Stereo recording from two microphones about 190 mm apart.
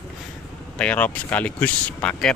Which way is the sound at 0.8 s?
5° left (ahead or behind).